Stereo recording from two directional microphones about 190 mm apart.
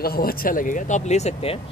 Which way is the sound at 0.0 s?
50° left (ahead or behind).